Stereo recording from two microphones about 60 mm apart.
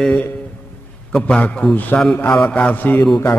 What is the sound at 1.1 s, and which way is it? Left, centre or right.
A man's voice, left.